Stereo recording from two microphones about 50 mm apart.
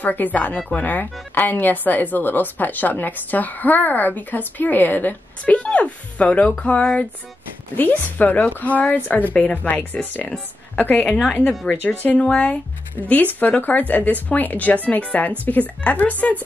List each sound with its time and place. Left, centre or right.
0.0 s speech: left
5.4 s speech: left
10.2 s speech: left
10.8 s speech: left
12.3 s speech: left
13.4 s speech: left